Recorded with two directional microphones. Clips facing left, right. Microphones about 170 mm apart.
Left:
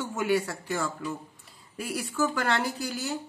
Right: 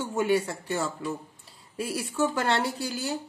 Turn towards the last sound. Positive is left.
turn(degrees=-30)  # may be behind; listen again after turning